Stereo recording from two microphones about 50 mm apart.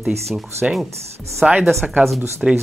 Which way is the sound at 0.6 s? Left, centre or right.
Centre.